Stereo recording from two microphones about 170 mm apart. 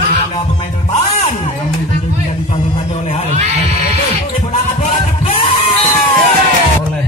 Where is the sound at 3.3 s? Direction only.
40° right (ahead or behind).